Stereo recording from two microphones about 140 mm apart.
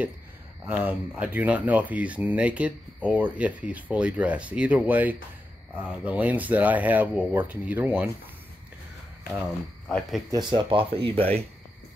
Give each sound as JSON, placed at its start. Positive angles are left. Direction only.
{"t": 0.7, "sound": "speech", "side_deg": -10}
{"t": 9.8, "sound": "speech", "side_deg": 5}
{"t": 10.3, "sound": "speech", "side_deg": -35}